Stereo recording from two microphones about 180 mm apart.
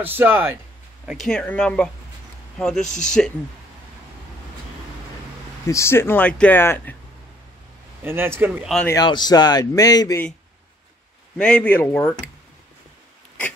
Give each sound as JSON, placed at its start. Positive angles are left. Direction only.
{"t": 0.0, "sound": "a man's voice", "side_deg": -10}
{"t": 1.2, "sound": "speech", "side_deg": 5}
{"t": 5.7, "sound": "speech", "side_deg": 15}
{"t": 8.0, "sound": "a man's voice", "side_deg": -10}
{"t": 8.8, "sound": "speech", "side_deg": 20}
{"t": 11.3, "sound": "speech", "side_deg": 5}